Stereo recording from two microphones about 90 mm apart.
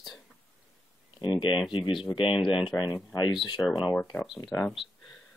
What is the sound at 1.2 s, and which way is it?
Speech, 65° left (ahead or behind).